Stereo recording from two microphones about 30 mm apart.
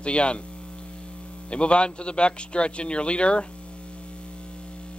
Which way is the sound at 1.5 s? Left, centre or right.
Left.